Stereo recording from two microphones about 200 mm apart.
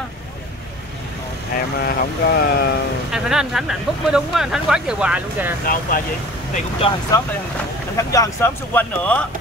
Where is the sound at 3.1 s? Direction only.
5° right (ahead or behind).